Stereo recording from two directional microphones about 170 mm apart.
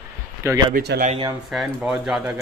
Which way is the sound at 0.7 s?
70° right (ahead or behind).